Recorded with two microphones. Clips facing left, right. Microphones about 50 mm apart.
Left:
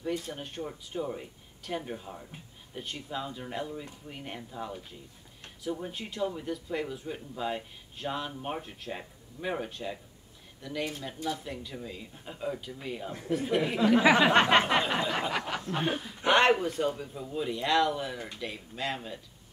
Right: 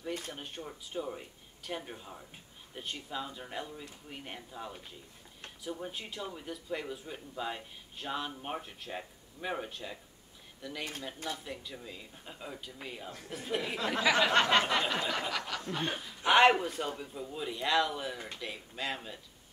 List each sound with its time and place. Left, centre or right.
0.6 s speech: centre
13.6 s speech: centre
16.3 s speech: centre